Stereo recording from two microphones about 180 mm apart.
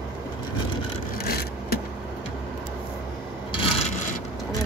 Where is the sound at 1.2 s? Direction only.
60° left (ahead or behind).